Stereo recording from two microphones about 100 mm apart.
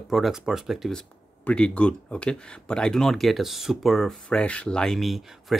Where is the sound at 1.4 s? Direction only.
10° left (ahead or behind).